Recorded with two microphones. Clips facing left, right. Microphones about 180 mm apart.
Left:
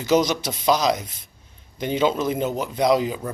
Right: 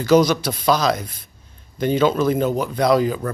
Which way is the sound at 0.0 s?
20° left (ahead or behind).